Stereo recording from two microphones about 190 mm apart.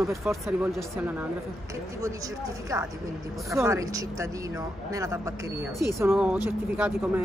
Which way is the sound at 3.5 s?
15° right (ahead or behind).